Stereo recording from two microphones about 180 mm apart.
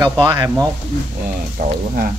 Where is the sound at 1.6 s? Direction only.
55° right (ahead or behind).